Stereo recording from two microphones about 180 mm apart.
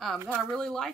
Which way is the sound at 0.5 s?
5° left (ahead or behind).